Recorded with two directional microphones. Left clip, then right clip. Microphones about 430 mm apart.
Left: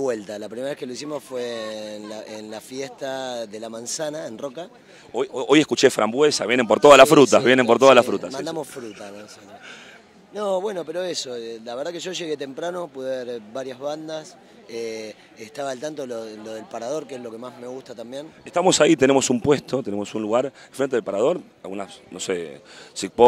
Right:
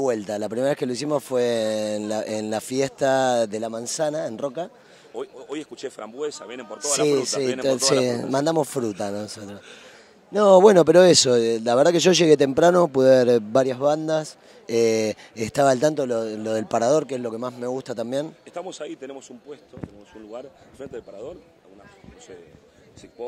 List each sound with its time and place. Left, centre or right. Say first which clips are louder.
0.0 s speech: right 2 dB; centre
5.3 s speech: left 16 dB; left
8.3 s speech: right 7 dB; right
18.5 s speech: left 16 dB; left
22.9 s speech: left 19 dB; left